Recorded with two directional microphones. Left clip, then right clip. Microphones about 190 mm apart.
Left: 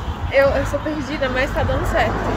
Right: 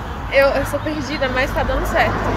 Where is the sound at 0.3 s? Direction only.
15° left (ahead or behind).